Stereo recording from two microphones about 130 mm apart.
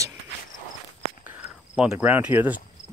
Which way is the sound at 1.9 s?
15° right (ahead or behind).